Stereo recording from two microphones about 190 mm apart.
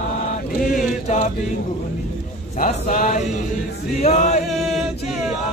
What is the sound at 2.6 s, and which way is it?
Speech, 40° left (ahead or behind).